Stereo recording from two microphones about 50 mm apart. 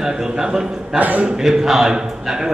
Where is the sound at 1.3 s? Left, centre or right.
Centre.